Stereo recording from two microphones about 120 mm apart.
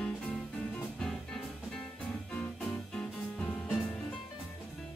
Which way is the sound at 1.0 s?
5° left (ahead or behind).